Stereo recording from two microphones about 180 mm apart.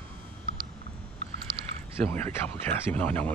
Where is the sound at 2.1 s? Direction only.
10° left (ahead or behind).